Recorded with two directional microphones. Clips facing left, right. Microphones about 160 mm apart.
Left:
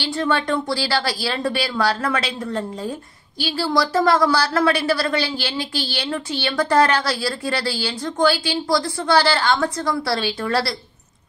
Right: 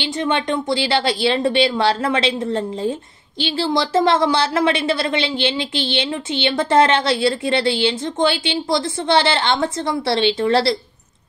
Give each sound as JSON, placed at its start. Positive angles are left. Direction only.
{"t": 0.0, "sound": "a woman's voice", "side_deg": -20}